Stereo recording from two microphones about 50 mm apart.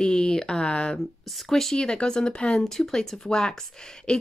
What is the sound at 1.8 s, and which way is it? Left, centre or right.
Speech, centre.